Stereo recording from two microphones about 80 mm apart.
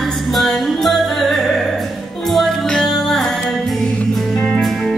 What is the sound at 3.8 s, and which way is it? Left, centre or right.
Music, centre.